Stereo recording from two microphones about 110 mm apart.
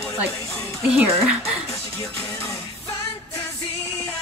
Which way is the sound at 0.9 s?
10° right (ahead or behind).